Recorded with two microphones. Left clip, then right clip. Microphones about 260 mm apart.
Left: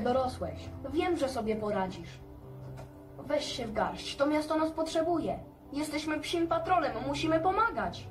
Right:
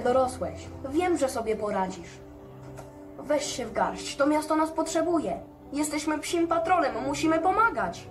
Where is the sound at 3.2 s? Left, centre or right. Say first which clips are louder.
Right 5 dB; right.